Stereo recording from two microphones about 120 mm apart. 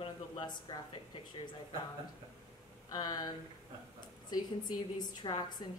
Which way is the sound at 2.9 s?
35° left (ahead or behind).